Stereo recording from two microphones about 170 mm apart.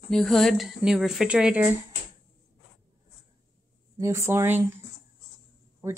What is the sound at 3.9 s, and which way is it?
Speech, 20° right (ahead or behind).